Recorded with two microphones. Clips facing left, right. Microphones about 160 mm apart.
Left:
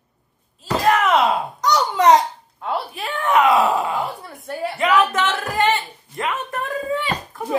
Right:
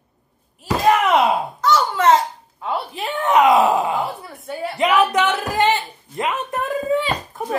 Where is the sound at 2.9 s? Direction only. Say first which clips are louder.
Right 3 dB; 20° right (ahead or behind).